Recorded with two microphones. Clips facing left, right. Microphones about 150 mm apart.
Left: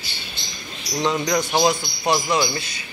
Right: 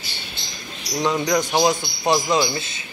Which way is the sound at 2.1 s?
20° right (ahead or behind).